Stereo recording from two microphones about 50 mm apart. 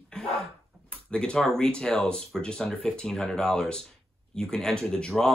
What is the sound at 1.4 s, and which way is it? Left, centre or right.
Speech, centre.